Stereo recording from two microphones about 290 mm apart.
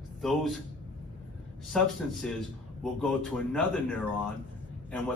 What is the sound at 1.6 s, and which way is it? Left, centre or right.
A man's voice, centre.